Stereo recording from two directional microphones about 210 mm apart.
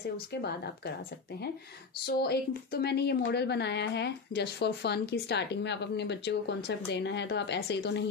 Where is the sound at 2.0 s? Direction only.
50° left (ahead or behind).